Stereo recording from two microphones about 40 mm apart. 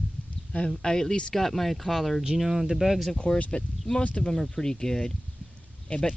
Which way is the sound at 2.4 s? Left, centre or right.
Centre.